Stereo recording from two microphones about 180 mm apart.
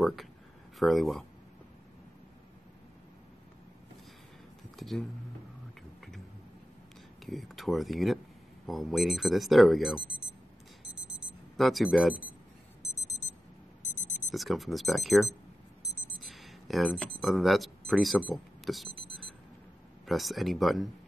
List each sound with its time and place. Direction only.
0.0 s speech: centre (ahead or behind)
4.7 s speech: centre (ahead or behind)
7.2 s speech: centre (ahead or behind)
11.5 s speech: centre (ahead or behind)
12.8 s alarm clock: 15° left (ahead or behind)
14.1 s speech: centre (ahead or behind)
18.3 s a sound: centre (ahead or behind)
20.1 s speech: centre (ahead or behind)